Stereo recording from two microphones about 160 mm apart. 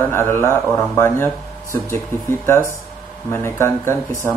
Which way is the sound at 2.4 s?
15° left (ahead or behind).